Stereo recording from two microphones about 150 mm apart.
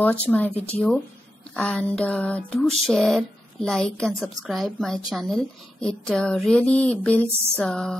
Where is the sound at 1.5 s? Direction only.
5° left (ahead or behind).